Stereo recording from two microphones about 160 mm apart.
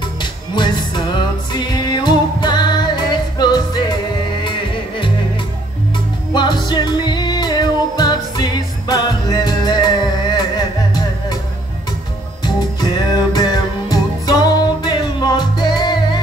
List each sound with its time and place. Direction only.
0.2 s music: 30° left (ahead or behind)
6.3 s music: 30° left (ahead or behind)
12.4 s music: 25° left (ahead or behind)